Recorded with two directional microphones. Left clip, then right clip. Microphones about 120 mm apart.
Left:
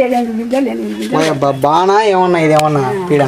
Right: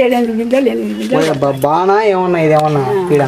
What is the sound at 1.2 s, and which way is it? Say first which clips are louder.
A man's voice: left 2 dB; 15° left (ahead or behind).